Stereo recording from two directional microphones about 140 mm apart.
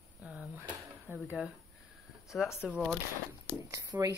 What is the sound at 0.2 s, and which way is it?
Drawer open or close, 10° right (ahead or behind).